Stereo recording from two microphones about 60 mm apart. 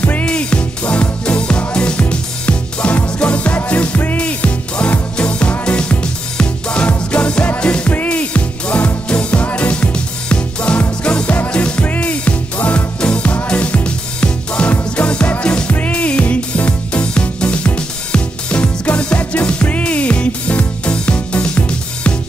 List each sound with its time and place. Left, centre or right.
0.2 s music: centre